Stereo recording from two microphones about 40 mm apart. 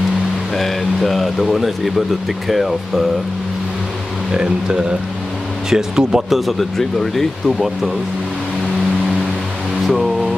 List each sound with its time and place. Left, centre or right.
0.6 s speech: centre
4.3 s speech: right
6.3 s speech: centre
9.8 s a sound: centre